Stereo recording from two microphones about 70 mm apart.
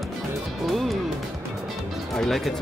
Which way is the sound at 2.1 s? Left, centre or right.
Centre.